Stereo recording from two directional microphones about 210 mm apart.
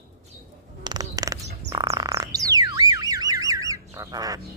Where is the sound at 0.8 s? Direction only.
20° right (ahead or behind).